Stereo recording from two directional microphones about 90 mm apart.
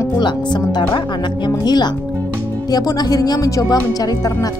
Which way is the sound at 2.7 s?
45° left (ahead or behind).